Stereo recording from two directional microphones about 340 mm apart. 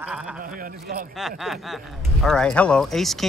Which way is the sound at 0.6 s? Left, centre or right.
Right.